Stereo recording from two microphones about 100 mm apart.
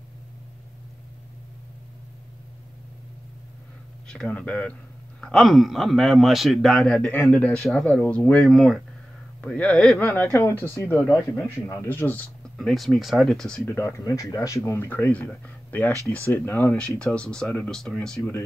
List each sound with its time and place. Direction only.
4.1 s a man's voice: 10° left (ahead or behind)
9.9 s speech: 25° left (ahead or behind)
12.5 s a man's voice: centre (ahead or behind)
13.7 s speech: 25° left (ahead or behind)
17.0 s speech: 10° left (ahead or behind)